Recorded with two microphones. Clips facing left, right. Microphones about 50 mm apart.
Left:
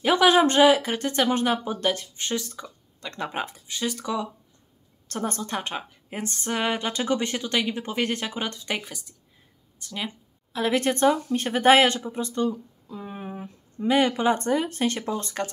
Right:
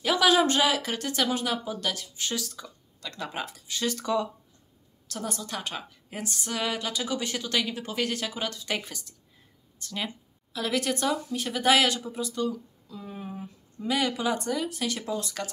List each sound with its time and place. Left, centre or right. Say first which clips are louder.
0.0 s speech: left 4 dB; left; by 4.3 s centre
5.1 s a woman's voice: left 5 dB; left
5.4 s a woman's voice: left 5 dB; left
6.2 s speech: left 4 dB; left
6.9 s speech: left 5 dB; left
8.7 s speech: left 1 dB; centre
10.5 s speech: left 5 dB; left
11.2 s speech: left 6 dB; left